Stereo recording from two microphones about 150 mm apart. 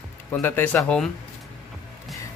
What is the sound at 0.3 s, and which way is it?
Speech, 15° left (ahead or behind).